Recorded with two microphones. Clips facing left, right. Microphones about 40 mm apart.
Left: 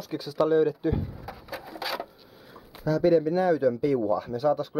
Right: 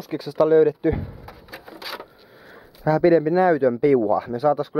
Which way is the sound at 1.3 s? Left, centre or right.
Centre.